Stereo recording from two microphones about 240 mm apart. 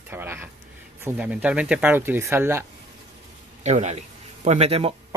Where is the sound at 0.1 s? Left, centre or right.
Centre.